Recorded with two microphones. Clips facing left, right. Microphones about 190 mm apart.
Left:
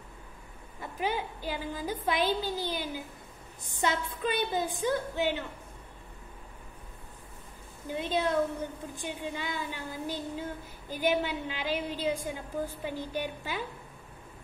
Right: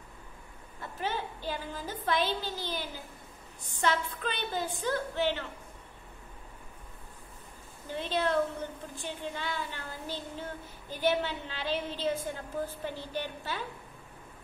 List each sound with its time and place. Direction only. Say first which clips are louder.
0.7 s a woman's voice: left 3 dB; 15° left (ahead or behind)
7.9 s a woman's voice: left 1 dB; 10° left (ahead or behind)